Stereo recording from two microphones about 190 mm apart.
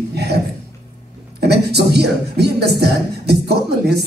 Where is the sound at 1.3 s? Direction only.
60° right (ahead or behind).